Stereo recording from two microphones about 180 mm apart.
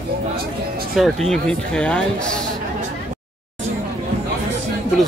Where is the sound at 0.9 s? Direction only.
Centre (ahead or behind).